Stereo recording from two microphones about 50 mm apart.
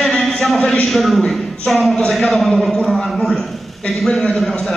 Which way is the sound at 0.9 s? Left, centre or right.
Centre.